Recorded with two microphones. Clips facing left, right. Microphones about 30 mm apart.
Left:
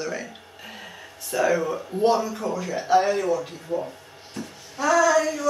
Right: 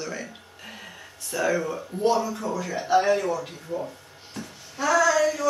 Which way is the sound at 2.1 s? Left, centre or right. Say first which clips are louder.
Left 1 dB; centre.